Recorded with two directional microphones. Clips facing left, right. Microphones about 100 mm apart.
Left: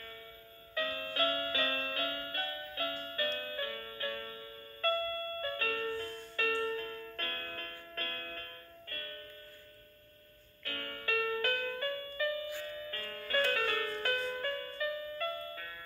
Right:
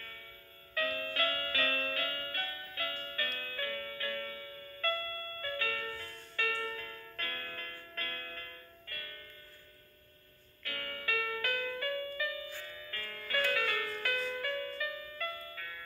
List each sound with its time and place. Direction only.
0.7 s music: 25° left (ahead or behind)
10.6 s music: 35° left (ahead or behind)